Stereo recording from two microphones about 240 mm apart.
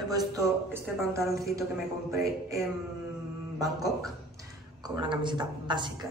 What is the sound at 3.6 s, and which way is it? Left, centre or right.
Speech, centre.